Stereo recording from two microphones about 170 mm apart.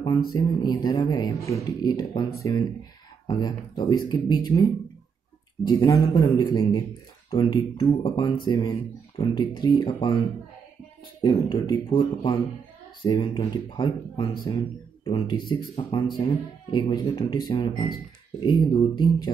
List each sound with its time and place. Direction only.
0.3 s speech: 25° left (ahead or behind)
5.8 s speech: 20° left (ahead or behind)
11.2 s speech: 25° left (ahead or behind)